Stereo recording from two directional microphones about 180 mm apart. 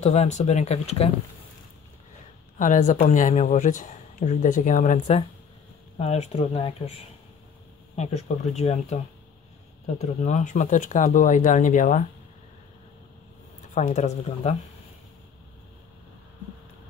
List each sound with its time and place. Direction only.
0.0 s speech: 40° left (ahead or behind)
2.6 s speech: 45° left (ahead or behind)
8.5 s speech: 40° left (ahead or behind)
10.2 s speech: 45° left (ahead or behind)
13.7 s speech: 40° left (ahead or behind)